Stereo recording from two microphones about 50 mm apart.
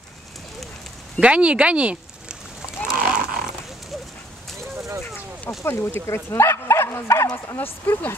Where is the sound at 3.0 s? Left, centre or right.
Centre.